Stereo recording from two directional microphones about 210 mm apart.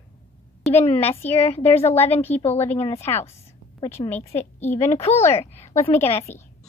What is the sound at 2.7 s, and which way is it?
Speech, 30° left (ahead or behind).